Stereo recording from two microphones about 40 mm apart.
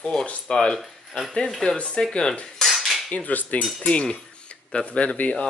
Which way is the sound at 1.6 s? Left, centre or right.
Left.